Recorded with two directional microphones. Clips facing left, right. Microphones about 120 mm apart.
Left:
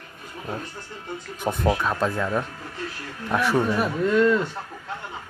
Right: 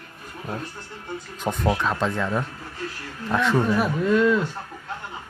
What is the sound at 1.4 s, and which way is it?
A man's voice, 15° left (ahead or behind).